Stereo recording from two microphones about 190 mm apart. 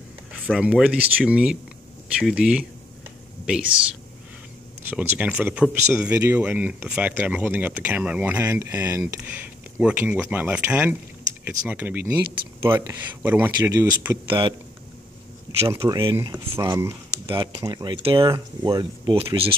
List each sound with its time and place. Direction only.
0.3 s speech: 5° right (ahead or behind)
4.8 s speech: 10° right (ahead or behind)
14.2 s speech: 25° right (ahead or behind)
15.7 s speech: 15° right (ahead or behind)